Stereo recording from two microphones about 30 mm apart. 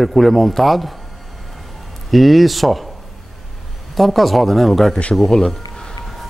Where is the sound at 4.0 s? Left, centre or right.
Centre.